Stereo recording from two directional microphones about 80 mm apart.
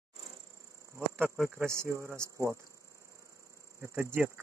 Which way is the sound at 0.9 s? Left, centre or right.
Right.